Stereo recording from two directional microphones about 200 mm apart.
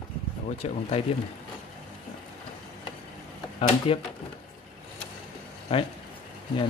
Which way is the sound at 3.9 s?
30° left (ahead or behind).